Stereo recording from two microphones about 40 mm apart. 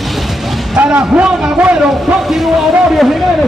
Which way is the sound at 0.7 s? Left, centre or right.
Right.